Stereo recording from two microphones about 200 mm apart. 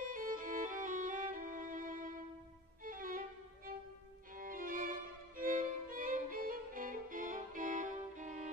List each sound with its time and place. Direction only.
0.0 s violin: 40° right (ahead or behind)